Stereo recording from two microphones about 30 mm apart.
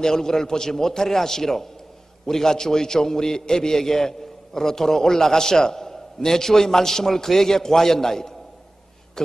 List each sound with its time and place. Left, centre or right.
0.0 s a man's voice: centre